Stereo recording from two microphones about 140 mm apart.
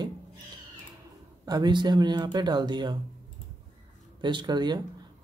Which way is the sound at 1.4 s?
30° right (ahead or behind).